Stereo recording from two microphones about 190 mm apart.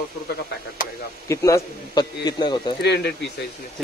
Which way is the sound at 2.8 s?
60° left (ahead or behind).